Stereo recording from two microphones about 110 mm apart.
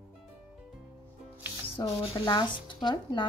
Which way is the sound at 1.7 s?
55° left (ahead or behind).